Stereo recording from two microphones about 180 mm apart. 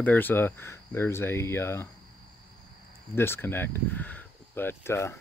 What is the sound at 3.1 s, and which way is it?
Speech, 10° left (ahead or behind).